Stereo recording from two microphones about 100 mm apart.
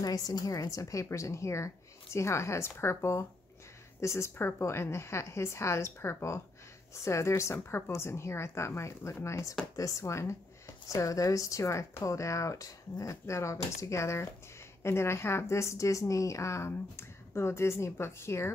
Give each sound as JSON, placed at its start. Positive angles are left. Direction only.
{"t": 0.0, "sound": "a woman's voice", "side_deg": 40}